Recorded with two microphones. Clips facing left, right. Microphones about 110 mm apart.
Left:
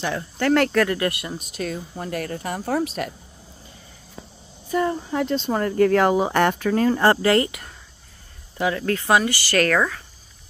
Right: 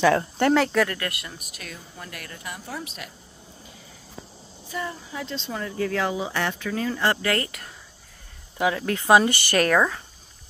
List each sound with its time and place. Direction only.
0.6 s speech: centre (ahead or behind)
0.9 s speech: 25° left (ahead or behind); by 2.9 s 55° left (ahead or behind)
4.6 s speech: 45° left (ahead or behind)
7.2 s speech: 25° left (ahead or behind)
8.5 s speech: 15° right (ahead or behind)